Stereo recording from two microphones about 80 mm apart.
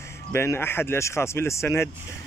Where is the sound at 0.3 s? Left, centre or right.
Left.